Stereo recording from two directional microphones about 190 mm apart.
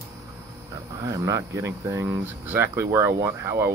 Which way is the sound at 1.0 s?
15° right (ahead or behind).